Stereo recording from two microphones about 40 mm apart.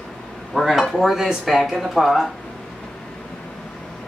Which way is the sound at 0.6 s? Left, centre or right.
Centre.